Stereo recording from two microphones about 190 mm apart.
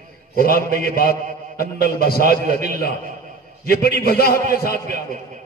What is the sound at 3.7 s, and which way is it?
Speech, 55° left (ahead or behind).